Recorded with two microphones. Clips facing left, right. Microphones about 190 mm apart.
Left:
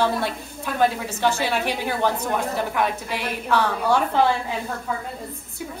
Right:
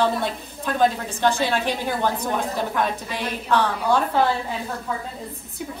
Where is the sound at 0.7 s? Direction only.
5° left (ahead or behind).